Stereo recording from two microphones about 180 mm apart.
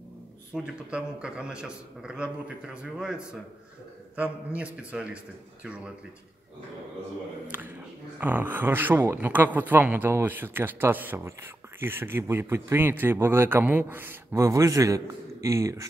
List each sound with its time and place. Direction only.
0.5 s a man's voice: 5° right (ahead or behind)
4.6 s speech: 5° right (ahead or behind)
7.5 s speech: 10° right (ahead or behind)